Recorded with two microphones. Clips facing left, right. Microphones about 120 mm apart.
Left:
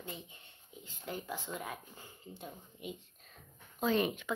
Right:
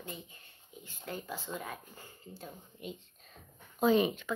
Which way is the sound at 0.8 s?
15° left (ahead or behind).